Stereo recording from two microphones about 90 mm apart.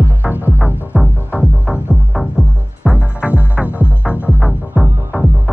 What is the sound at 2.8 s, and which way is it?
Music, 10° right (ahead or behind).